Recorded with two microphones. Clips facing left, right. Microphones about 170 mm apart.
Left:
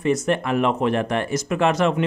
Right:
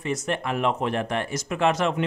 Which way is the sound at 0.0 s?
55° left (ahead or behind).